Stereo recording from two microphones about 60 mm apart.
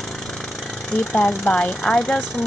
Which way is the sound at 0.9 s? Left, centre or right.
Centre.